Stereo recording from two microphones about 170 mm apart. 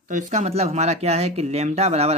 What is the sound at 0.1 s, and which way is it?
Speech, 45° right (ahead or behind).